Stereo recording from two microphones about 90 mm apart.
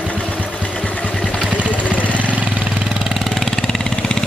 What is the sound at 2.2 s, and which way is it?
Engine, 15° right (ahead or behind).